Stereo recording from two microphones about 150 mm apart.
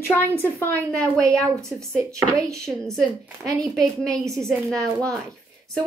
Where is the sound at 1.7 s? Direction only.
Centre (ahead or behind).